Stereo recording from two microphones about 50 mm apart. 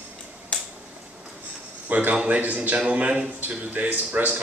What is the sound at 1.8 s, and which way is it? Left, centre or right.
A man's voice, right.